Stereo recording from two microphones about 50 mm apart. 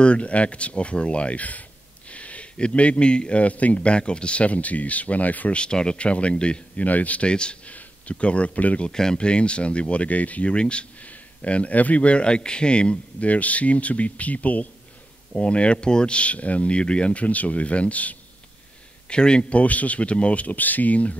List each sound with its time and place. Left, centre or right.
0.0 s speech: left
5.6 s speech: centre
6.8 s speech: left
8.8 s speech: centre
19.0 s speech: centre
19.6 s speech: left